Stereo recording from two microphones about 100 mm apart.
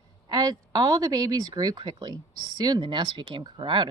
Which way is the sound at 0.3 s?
40° right (ahead or behind).